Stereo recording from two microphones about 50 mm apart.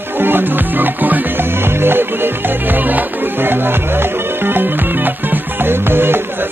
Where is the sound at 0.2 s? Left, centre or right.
Right.